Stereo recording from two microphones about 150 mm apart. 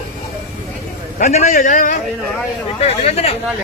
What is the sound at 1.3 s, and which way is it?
Speech, 50° left (ahead or behind).